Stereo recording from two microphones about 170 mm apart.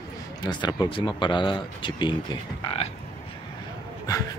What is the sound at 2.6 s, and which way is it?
Frog, 35° left (ahead or behind).